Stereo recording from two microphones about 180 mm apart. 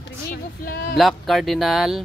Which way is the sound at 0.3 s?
55° left (ahead or behind).